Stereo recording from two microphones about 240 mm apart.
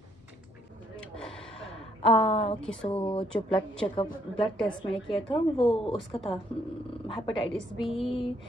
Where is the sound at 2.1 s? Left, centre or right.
Left.